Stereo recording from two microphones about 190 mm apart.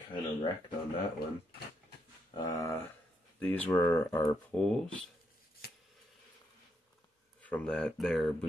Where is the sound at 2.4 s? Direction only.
15° left (ahead or behind).